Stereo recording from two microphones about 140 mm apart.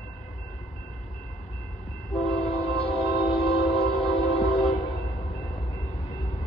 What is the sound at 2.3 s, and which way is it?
Train, 45° left (ahead or behind).